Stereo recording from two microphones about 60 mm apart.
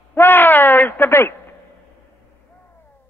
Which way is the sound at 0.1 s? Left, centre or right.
Left.